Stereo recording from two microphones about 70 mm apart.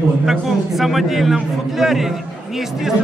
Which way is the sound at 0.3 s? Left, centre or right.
Centre.